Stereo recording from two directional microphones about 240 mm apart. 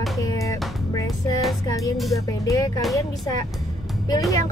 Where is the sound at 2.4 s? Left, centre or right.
Centre.